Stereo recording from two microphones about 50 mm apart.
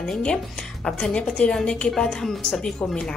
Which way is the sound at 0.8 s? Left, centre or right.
Centre.